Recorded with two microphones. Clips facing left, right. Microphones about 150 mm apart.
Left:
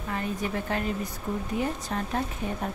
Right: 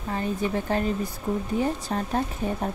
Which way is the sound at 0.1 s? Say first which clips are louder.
Right 4 dB; 30° right (ahead or behind).